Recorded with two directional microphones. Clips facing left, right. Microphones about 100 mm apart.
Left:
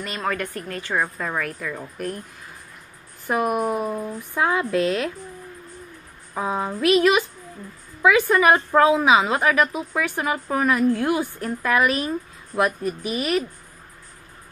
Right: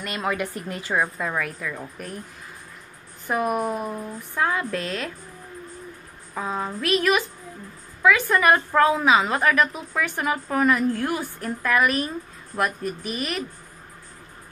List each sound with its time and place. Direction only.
0.0 s a woman's voice: 10° right (ahead or behind)
1.1 s a woman's voice: centre (ahead or behind)
3.3 s a woman's voice: 5° left (ahead or behind)
6.3 s a woman's voice: 15° left (ahead or behind)
11.0 s a woman's voice: 15° left (ahead or behind)
11.4 s a woman's voice: centre (ahead or behind)